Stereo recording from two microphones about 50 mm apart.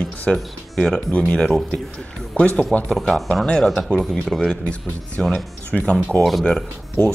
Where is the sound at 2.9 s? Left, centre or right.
Centre.